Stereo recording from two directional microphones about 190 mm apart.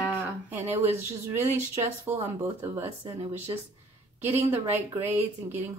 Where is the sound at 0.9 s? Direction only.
15° right (ahead or behind).